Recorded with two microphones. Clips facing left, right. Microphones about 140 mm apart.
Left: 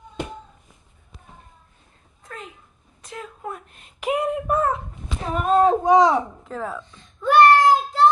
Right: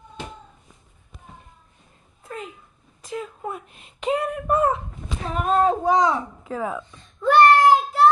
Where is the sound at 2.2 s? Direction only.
5° right (ahead or behind).